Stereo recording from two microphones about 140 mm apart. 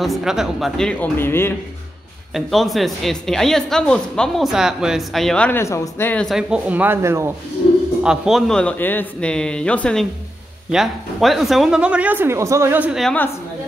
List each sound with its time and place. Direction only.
0.0 s speech: centre (ahead or behind); by 1.5 s 15° left (ahead or behind)
2.3 s speech: centre (ahead or behind)
5.6 s speech: 20° left (ahead or behind)
6.2 s speech: 5° right (ahead or behind)
8.0 s speech: 5° right (ahead or behind)
13.0 s speech: 10° left (ahead or behind)